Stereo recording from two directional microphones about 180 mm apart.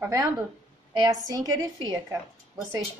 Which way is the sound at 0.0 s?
20° right (ahead or behind).